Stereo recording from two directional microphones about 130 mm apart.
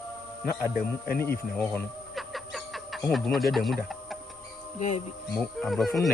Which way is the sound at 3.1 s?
Centre (ahead or behind).